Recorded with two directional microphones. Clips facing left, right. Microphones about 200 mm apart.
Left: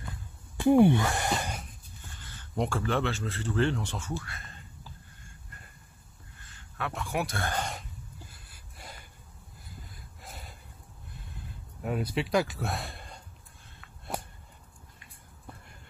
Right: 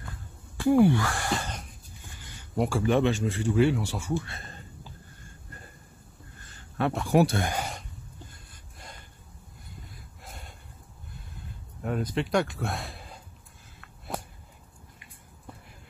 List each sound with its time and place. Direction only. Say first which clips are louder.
0.6 s speech: even; 20° left (ahead or behind)
2.1 s a sound: right 3 dB; 10° right (ahead or behind)
2.8 s speech: right 6 dB; 15° right (ahead or behind)
4.2 s speech: right 4 dB; 25° right (ahead or behind)
6.8 s speech: right 10 dB; 35° right (ahead or behind)
7.3 s speech: right 3 dB; 10° right (ahead or behind)
8.3 s a sound: right 2 dB; 5° left (ahead or behind)
9.8 s snort: right 1 dB; centre (ahead or behind)
11.1 s a sound: right 1 dB; 5° left (ahead or behind)